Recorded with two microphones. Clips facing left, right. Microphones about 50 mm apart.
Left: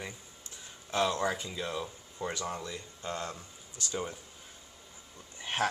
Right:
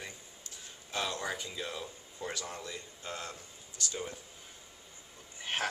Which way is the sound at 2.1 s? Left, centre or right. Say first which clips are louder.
Left 4 dB; centre.